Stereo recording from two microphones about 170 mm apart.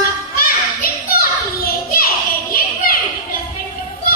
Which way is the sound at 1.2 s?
60° left (ahead or behind).